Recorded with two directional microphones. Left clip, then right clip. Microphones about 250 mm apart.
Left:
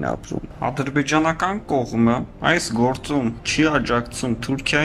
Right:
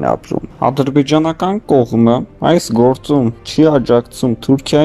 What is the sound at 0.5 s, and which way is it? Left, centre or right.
Speech, centre.